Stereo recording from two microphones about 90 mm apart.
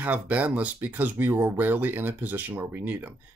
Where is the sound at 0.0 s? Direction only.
15° right (ahead or behind).